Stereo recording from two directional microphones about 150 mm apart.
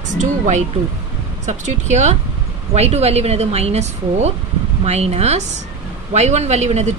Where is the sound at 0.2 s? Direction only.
50° right (ahead or behind).